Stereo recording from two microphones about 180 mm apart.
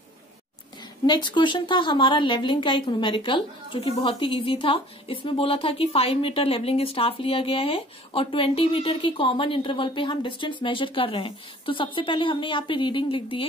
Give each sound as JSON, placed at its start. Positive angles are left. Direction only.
{"t": 1.0, "sound": "a woman's voice", "side_deg": 25}